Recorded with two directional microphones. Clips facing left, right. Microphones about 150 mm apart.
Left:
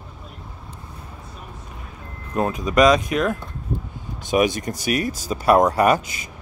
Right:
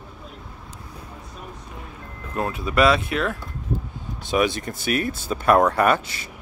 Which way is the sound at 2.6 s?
15° left (ahead or behind).